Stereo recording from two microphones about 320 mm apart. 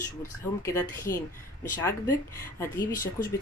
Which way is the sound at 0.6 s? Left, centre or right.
Centre.